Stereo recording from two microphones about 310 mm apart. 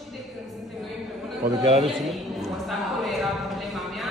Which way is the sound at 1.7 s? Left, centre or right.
Centre.